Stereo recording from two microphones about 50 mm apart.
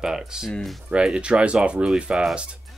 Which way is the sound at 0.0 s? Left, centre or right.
Centre.